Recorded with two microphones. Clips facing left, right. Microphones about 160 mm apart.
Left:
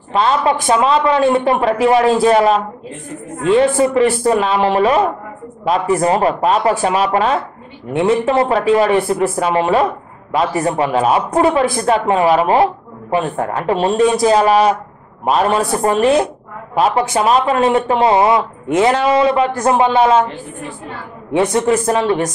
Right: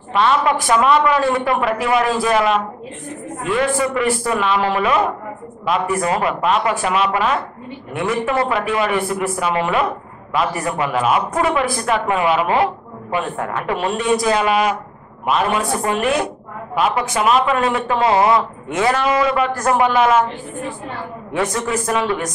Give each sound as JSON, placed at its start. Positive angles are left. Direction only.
{"t": 0.1, "sound": "speech", "side_deg": 30}
{"t": 21.3, "sound": "speech", "side_deg": 25}